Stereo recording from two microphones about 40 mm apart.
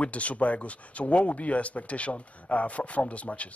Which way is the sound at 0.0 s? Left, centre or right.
Left.